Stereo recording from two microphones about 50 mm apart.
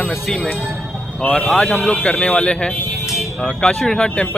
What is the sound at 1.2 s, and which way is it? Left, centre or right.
Speech, centre.